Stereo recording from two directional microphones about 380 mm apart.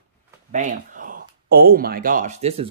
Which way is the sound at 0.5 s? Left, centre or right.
Right.